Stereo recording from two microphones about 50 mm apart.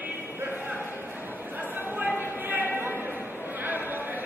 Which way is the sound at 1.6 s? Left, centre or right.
Right.